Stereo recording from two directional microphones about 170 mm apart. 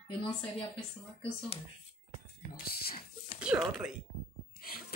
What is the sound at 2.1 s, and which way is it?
Whispering, 65° left (ahead or behind).